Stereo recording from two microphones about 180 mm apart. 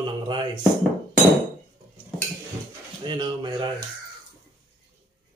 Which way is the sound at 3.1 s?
25° right (ahead or behind).